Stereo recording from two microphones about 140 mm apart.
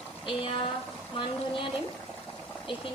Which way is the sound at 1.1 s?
35° left (ahead or behind).